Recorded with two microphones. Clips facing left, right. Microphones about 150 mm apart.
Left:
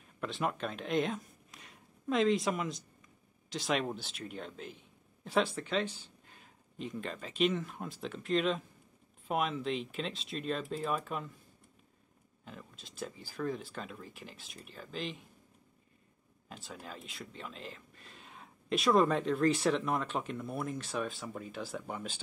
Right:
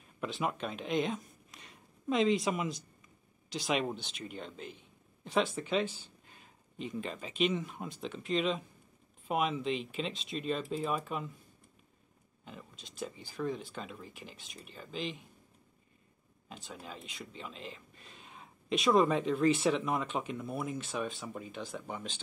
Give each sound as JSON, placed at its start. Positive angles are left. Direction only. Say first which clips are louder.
{"t": 0.2, "sound": "speech", "louder": "even", "side_deg": -5}
{"t": 12.4, "sound": "speech", "louder": "even", "side_deg": 0}
{"t": 16.4, "sound": "speech", "louder": "even", "side_deg": 0}